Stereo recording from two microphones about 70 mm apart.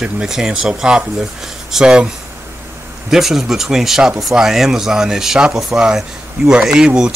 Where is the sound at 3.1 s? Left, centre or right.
Centre.